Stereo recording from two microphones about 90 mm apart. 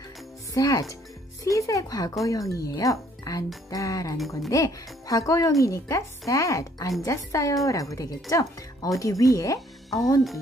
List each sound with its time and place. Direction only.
0.6 s speech: 40° left (ahead or behind)